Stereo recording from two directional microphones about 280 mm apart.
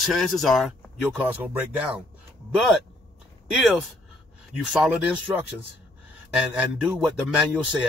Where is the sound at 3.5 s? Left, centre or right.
Centre.